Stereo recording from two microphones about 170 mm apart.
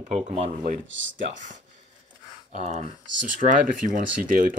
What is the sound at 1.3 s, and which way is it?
Speech, 50° right (ahead or behind).